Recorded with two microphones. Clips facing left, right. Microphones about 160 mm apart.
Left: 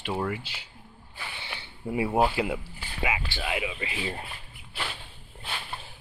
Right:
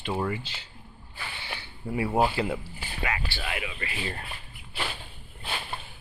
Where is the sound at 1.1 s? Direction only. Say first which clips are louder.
Right 1 dB; 20° left (ahead or behind).